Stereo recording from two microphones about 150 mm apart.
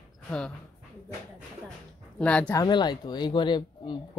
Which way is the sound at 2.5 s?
25° left (ahead or behind).